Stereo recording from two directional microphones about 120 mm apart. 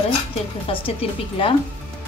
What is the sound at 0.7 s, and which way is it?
Speech, 50° left (ahead or behind).